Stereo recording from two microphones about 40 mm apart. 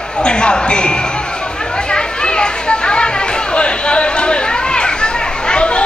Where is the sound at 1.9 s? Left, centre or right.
Left.